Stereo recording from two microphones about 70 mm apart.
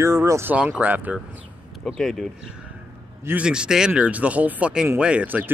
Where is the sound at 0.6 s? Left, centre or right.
Right.